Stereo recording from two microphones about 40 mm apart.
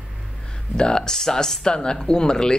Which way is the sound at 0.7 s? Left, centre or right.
Centre.